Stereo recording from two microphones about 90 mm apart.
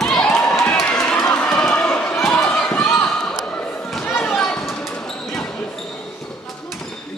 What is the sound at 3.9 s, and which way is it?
Basketball bounce, 5° left (ahead or behind).